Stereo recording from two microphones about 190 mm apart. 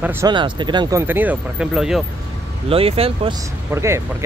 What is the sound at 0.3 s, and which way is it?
Speech, 25° right (ahead or behind).